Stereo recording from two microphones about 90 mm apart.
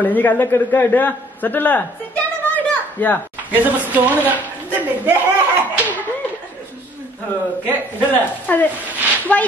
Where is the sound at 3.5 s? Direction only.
20° right (ahead or behind).